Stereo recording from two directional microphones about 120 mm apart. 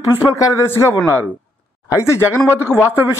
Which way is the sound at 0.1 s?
25° left (ahead or behind).